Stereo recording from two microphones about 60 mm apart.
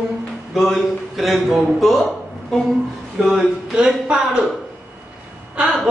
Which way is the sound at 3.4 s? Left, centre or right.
Centre.